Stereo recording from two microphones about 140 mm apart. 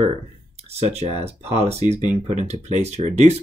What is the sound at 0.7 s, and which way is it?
Speech, 50° right (ahead or behind).